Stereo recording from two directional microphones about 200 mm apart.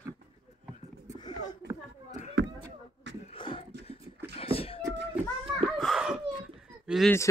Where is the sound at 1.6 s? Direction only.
55° right (ahead or behind).